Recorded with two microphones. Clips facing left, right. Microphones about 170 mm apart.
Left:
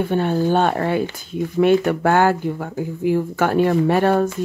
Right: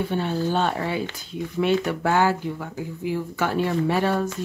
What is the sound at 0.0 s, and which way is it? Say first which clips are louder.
Speech: left 6 dB; 55° left (ahead or behind).